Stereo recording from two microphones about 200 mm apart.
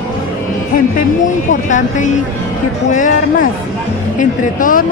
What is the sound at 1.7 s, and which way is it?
Speech, 40° left (ahead or behind).